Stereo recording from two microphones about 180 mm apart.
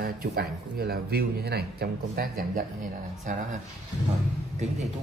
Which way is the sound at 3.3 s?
45° right (ahead or behind).